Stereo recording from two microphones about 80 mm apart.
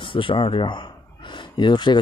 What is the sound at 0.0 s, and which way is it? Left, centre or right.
Speech, left.